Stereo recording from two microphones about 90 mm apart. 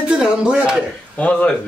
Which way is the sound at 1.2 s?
15° left (ahead or behind).